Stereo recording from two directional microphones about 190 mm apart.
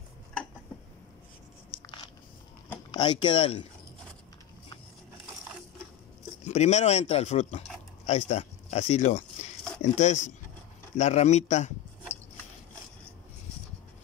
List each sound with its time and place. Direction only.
1.7 s biting: 50° left (ahead or behind)
2.9 s speech: 25° left (ahead or behind)
6.4 s speech: 35° left (ahead or behind)